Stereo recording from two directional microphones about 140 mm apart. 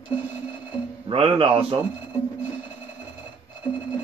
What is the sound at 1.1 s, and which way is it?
Speech, 40° right (ahead or behind).